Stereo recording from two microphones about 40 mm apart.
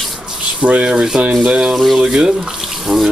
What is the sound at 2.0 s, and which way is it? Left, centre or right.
Speech, right.